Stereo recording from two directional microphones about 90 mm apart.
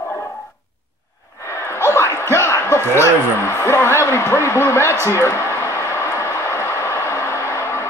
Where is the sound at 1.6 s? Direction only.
30° left (ahead or behind).